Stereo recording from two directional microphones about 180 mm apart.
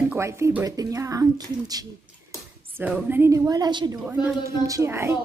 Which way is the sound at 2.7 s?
10° right (ahead or behind).